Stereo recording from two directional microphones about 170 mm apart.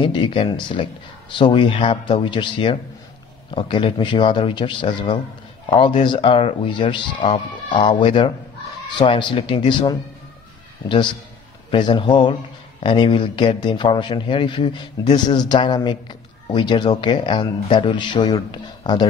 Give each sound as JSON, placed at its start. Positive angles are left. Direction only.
{"t": 0.0, "sound": "a man's voice", "side_deg": 30}
{"t": 11.7, "sound": "a man's voice", "side_deg": 30}